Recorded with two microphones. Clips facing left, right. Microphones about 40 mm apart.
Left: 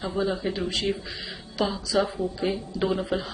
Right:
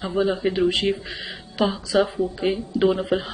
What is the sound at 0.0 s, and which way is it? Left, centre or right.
A woman's voice, right.